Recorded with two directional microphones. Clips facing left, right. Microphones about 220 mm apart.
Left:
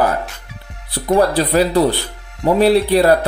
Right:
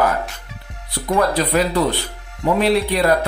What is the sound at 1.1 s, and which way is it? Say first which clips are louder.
Speech: left 4 dB; 30° left (ahead or behind).